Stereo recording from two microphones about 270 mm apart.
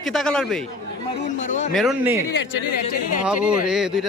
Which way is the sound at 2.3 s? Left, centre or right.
Left.